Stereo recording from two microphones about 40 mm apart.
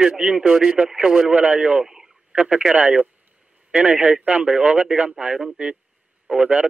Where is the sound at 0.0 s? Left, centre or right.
Right.